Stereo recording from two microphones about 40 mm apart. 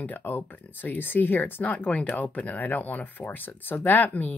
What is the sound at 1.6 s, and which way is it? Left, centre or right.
Speech, left.